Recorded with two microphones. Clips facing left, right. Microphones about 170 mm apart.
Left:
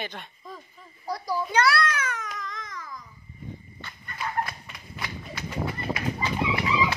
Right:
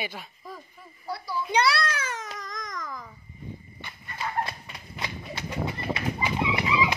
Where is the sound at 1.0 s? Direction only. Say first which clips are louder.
Left 2 dB; 40° left (ahead or behind).